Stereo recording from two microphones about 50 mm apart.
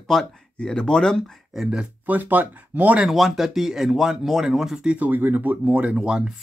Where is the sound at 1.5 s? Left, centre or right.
Centre.